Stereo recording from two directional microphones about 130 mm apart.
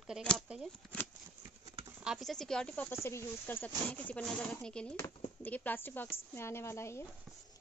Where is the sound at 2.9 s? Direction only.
20° left (ahead or behind).